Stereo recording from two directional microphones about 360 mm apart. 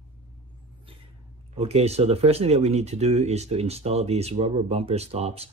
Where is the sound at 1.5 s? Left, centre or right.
Centre.